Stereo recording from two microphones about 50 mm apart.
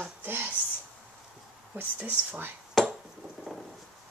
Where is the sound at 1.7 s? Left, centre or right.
Right.